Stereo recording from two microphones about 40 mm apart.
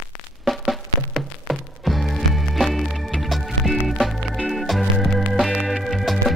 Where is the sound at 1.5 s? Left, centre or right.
Centre.